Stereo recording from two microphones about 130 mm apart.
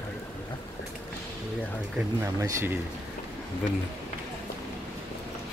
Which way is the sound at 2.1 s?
25° right (ahead or behind).